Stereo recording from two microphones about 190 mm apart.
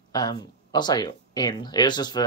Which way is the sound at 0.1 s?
20° left (ahead or behind).